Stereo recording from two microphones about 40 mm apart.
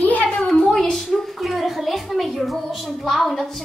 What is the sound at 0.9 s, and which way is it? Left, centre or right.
A woman's voice, centre.